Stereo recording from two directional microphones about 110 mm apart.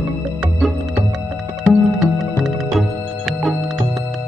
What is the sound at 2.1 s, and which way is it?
Music, centre (ahead or behind).